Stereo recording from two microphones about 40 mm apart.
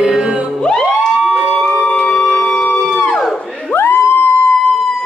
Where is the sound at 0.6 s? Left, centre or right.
Centre.